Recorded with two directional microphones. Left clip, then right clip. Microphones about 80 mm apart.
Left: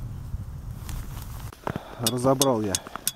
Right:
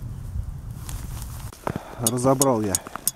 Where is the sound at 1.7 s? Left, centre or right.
Centre.